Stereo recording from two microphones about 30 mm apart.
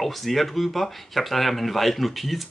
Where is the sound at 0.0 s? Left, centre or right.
Centre.